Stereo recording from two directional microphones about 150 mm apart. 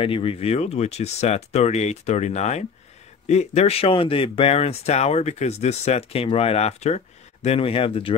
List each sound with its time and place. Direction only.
0.0 s speech: 35° left (ahead or behind)